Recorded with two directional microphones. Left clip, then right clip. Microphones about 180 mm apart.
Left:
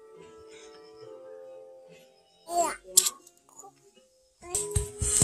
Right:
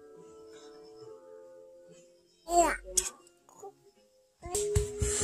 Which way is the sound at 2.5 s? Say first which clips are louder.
Right 2 dB; 55° right (ahead or behind).